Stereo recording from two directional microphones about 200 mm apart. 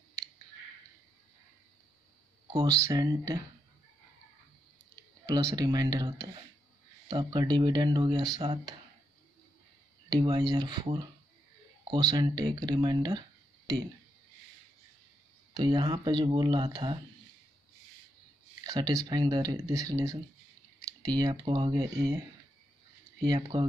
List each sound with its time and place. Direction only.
2.5 s speech: 15° right (ahead or behind)
5.2 s speech: 15° right (ahead or behind)
10.0 s speech: 20° right (ahead or behind)
15.5 s speech: 20° right (ahead or behind)
18.6 s speech: 20° right (ahead or behind)
23.2 s speech: 20° right (ahead or behind)